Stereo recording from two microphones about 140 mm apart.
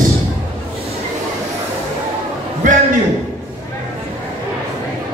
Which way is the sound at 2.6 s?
70° right (ahead or behind).